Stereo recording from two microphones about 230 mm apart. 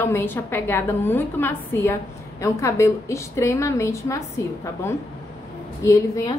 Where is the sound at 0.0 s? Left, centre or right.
Centre.